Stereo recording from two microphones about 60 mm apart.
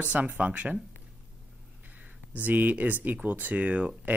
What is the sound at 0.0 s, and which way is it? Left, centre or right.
Speech, right.